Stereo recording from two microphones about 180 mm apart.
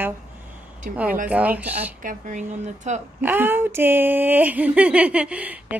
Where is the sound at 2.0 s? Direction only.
45° right (ahead or behind).